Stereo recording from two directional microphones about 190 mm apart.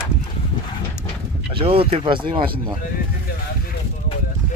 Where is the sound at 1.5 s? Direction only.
30° right (ahead or behind).